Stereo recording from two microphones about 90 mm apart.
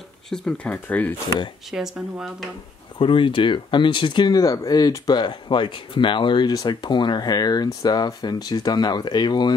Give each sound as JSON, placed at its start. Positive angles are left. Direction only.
{"t": 0.3, "sound": "speech", "side_deg": 10}
{"t": 0.8, "sound": "speech", "side_deg": 20}
{"t": 1.7, "sound": "speech", "side_deg": -5}
{"t": 3.0, "sound": "speech", "side_deg": 70}
{"t": 4.3, "sound": "speech", "side_deg": 40}
{"t": 6.5, "sound": "speech", "side_deg": 50}